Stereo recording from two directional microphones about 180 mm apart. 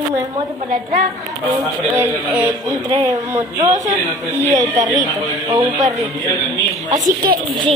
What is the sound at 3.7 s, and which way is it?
Speech, 45° right (ahead or behind).